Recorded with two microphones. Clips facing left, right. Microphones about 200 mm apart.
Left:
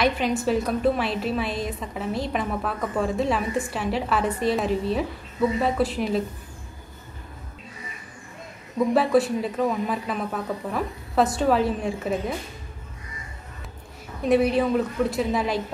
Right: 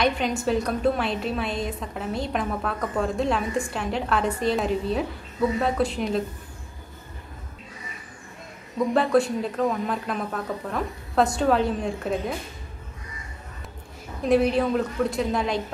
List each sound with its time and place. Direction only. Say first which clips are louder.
0.0 s a woman's voice: left 1 dB; centre (ahead or behind)
8.7 s a woman's voice: left 1 dB; 5° left (ahead or behind)
14.2 s a woman's voice: even; centre (ahead or behind)